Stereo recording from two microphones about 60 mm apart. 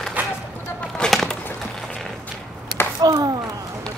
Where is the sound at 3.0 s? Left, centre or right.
Right.